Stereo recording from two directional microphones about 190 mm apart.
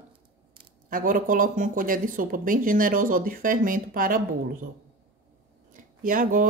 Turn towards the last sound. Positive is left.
turn(degrees=-45)  # may be behind; listen again after turning